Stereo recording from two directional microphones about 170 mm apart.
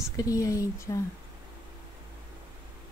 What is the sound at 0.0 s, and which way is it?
Speech, 20° left (ahead or behind).